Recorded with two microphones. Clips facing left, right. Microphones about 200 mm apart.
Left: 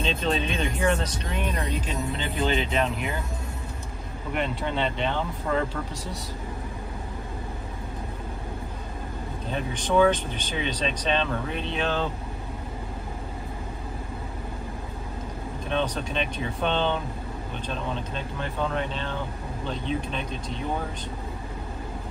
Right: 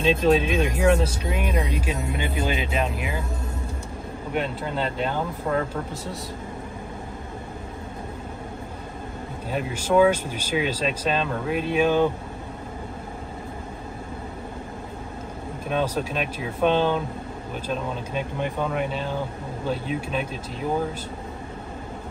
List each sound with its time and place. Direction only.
0.0 s speech: 5° right (ahead or behind)
4.3 s speech: centre (ahead or behind)
9.5 s speech: 5° right (ahead or behind)
15.7 s speech: 5° right (ahead or behind)